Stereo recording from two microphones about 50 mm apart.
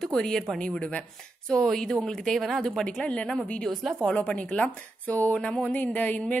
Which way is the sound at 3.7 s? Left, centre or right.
Centre.